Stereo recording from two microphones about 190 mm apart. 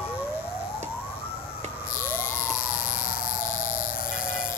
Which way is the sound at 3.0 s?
45° left (ahead or behind).